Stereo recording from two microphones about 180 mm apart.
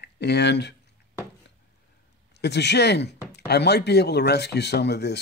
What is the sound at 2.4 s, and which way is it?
Speech, 70° left (ahead or behind).